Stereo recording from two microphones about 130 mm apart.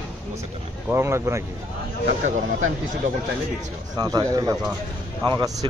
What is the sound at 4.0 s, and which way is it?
Speech, 30° right (ahead or behind).